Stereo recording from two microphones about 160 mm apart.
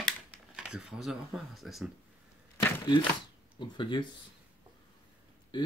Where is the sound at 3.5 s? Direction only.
30° left (ahead or behind).